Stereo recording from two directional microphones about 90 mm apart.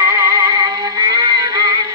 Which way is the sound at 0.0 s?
35° right (ahead or behind).